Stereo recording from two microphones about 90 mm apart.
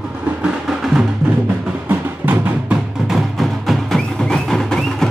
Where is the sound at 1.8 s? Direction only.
20° right (ahead or behind).